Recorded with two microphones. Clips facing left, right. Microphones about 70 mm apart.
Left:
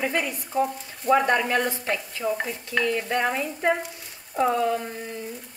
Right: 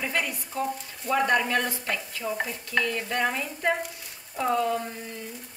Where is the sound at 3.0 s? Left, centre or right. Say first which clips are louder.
Left 3 dB; left.